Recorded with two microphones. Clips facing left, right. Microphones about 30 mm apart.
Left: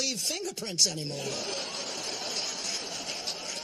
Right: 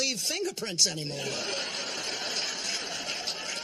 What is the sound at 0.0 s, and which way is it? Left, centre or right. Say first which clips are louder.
Speech: right 2 dB; right.